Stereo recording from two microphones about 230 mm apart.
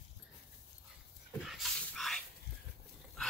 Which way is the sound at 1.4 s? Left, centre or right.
Centre.